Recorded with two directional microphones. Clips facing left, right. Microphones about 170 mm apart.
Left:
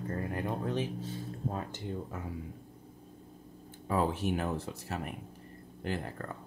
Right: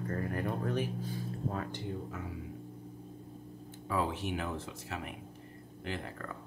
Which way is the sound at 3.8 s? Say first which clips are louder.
Left 4 dB; 40° left (ahead or behind).